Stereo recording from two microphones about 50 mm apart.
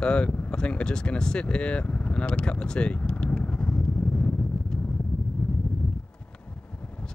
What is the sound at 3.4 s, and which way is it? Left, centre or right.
Vehicle, left.